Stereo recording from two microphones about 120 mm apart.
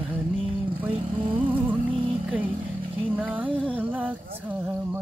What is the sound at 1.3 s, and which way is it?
Speech, 15° right (ahead or behind).